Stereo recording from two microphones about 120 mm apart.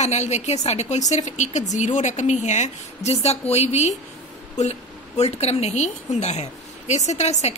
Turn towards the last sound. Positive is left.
turn(degrees=65)  # may be behind; listen again after turning